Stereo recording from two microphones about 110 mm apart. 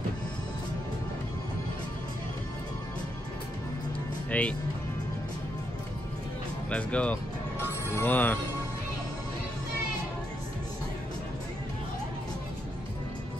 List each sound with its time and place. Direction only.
4.3 s speech: 10° left (ahead or behind)
6.7 s speech: 10° left (ahead or behind)